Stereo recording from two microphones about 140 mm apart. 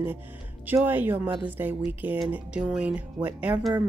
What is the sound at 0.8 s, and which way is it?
Speech, 15° right (ahead or behind).